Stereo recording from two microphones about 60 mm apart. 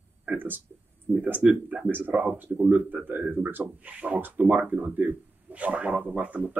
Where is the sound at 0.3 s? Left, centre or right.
Right.